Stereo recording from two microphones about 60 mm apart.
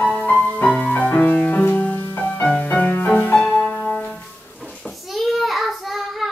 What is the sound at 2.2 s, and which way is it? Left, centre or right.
Music, centre.